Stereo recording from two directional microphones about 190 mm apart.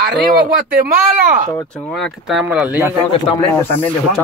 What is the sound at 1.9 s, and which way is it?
Speech, centre (ahead or behind).